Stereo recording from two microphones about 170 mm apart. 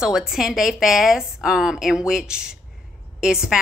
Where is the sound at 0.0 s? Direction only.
5° right (ahead or behind).